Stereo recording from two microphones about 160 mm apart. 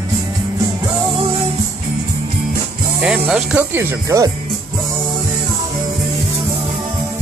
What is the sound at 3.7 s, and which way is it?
Speech, 15° right (ahead or behind).